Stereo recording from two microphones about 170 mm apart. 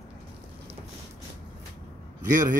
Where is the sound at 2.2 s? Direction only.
50° right (ahead or behind).